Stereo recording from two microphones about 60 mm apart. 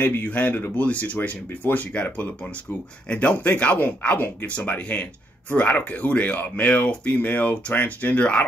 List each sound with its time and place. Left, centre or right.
0.0 s speech: left